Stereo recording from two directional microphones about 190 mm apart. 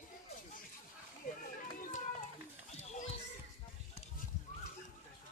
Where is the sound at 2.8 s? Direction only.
35° left (ahead or behind).